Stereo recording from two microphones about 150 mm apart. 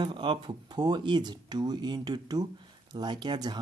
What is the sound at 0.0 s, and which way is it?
Speech, 35° right (ahead or behind).